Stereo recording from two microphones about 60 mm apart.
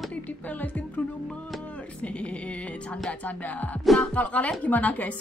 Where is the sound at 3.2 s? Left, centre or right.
Left.